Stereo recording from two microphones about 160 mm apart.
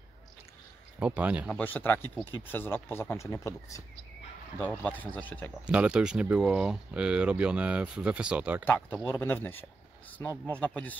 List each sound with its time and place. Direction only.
0.9 s speech: 10° right (ahead or behind)
1.6 s speech: 10° left (ahead or behind)
5.7 s speech: 5° right (ahead or behind)
8.6 s speech: 10° left (ahead or behind)